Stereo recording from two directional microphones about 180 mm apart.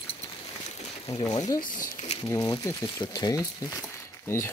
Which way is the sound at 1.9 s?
30° left (ahead or behind).